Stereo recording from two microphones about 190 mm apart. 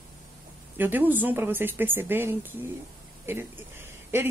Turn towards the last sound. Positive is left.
turn(degrees=-10)  # may be behind; listen again after turning